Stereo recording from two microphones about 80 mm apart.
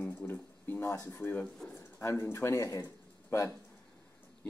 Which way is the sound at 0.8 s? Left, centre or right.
Left.